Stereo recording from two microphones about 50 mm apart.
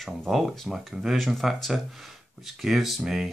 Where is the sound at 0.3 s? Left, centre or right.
Centre.